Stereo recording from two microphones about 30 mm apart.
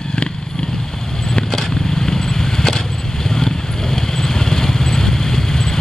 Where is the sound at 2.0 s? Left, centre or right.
Centre.